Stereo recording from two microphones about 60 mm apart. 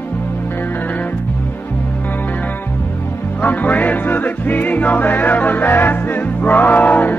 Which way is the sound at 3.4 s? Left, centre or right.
Left.